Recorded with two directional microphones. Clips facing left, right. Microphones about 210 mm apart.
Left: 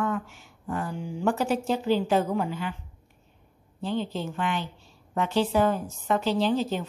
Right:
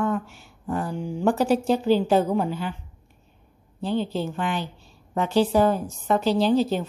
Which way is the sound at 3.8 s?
35° right (ahead or behind).